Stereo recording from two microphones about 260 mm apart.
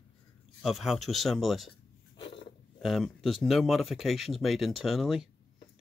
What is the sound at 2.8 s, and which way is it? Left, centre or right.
Speech, centre.